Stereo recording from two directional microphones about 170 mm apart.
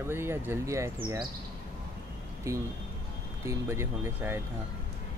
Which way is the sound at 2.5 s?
15° right (ahead or behind).